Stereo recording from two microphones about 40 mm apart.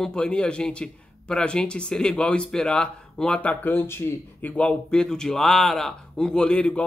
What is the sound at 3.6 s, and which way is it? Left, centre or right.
Speech, left.